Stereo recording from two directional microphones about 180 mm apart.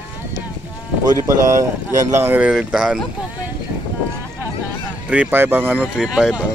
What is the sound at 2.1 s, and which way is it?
Speech, 10° right (ahead or behind).